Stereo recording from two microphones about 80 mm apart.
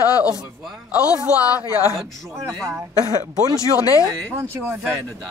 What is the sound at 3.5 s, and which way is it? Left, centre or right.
Speech, left.